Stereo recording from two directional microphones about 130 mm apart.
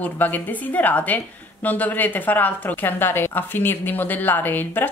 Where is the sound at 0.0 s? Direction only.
15° left (ahead or behind).